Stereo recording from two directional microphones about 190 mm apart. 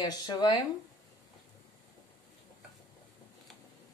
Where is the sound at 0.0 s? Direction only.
20° left (ahead or behind).